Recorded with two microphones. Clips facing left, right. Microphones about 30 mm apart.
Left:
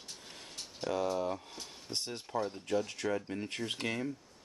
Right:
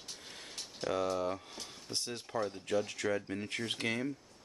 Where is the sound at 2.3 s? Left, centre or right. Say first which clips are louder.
Left 1 dB; centre.